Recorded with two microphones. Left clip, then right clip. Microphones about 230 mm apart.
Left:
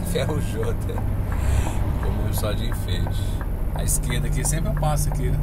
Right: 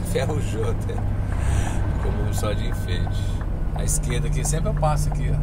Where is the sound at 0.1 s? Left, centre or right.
Centre.